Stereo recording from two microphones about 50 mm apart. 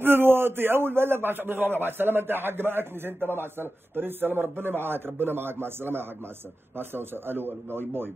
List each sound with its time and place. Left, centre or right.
0.0 s a man's voice: right